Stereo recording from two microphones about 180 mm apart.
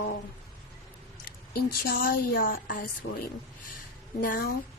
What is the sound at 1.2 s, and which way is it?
A woman's voice, 60° left (ahead or behind).